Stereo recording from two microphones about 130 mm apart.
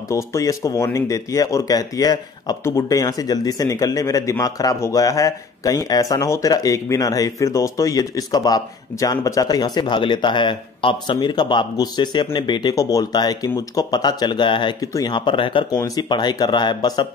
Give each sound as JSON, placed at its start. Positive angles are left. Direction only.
{"t": 0.1, "sound": "speech", "side_deg": 25}
{"t": 15.7, "sound": "speech", "side_deg": 30}